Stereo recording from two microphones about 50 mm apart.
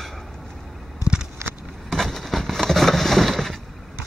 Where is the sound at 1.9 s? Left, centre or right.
Centre.